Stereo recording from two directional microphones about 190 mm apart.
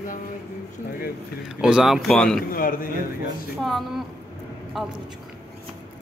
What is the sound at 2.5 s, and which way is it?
Speech, 50° left (ahead or behind).